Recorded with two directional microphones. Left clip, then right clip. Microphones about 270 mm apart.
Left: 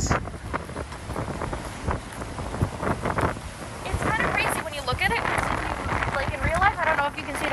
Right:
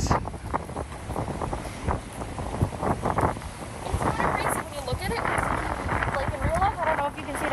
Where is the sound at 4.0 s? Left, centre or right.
Right.